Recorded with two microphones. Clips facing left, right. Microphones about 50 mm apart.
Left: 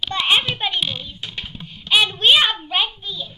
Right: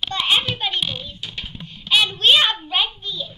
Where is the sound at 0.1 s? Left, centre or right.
Left.